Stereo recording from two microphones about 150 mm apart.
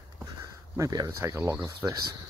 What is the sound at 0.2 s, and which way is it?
Speech, 20° right (ahead or behind).